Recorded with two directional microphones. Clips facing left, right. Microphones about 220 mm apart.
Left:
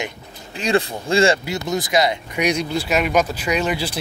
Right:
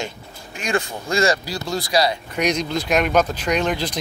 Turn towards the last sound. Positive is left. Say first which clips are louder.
# even
turn(degrees=10)  # may be behind; listen again after turning